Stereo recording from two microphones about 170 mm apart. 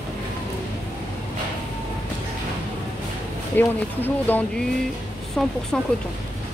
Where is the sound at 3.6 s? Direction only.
10° left (ahead or behind).